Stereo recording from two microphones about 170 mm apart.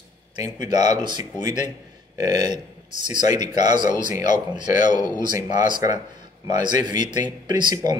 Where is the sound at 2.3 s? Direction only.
25° right (ahead or behind).